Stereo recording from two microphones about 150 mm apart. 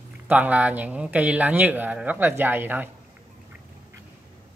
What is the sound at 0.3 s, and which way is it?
A man's voice, 10° right (ahead or behind).